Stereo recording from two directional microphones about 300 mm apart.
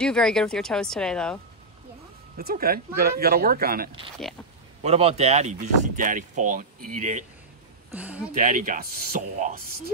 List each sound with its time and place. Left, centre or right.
0.0 s speech: centre
2.3 s speech: right
7.9 s speech: centre
8.4 s speech: right